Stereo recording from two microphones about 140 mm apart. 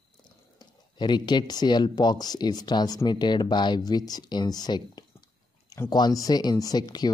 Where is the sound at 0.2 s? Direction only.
30° left (ahead or behind).